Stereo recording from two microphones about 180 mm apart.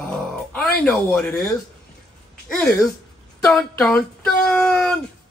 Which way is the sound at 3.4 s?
5° left (ahead or behind).